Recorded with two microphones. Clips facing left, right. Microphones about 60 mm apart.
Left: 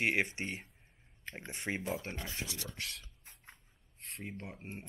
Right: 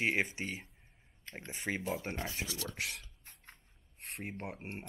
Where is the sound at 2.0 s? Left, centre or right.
Right.